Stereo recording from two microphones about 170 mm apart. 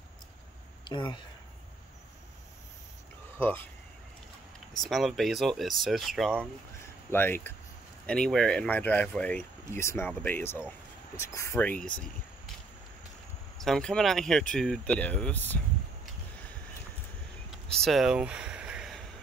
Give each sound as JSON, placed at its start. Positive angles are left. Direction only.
{"t": 0.8, "sound": "speech", "side_deg": 25}
{"t": 3.3, "sound": "speech", "side_deg": 10}
{"t": 4.8, "sound": "speech", "side_deg": 0}
{"t": 7.1, "sound": "speech", "side_deg": 10}
{"t": 13.6, "sound": "speech", "side_deg": 5}
{"t": 17.6, "sound": "a sound", "side_deg": 0}